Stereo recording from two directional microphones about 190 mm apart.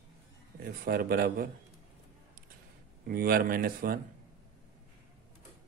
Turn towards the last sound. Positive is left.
turn(degrees=-50)  # may be behind; listen again after turning